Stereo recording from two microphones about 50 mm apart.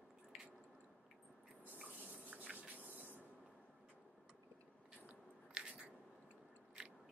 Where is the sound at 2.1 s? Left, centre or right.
Right.